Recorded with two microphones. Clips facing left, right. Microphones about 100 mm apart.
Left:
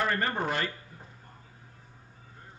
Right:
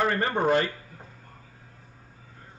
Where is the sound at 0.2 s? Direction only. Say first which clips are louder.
Right 7 dB; 25° right (ahead or behind).